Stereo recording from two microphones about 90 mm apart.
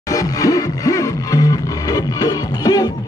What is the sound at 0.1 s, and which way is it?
Music, 40° left (ahead or behind).